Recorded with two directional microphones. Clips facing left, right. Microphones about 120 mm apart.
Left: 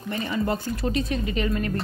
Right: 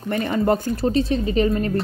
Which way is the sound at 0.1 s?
50° right (ahead or behind).